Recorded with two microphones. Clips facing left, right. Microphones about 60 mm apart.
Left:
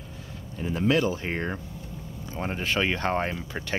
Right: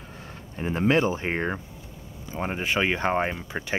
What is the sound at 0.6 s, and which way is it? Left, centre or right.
Speech, right.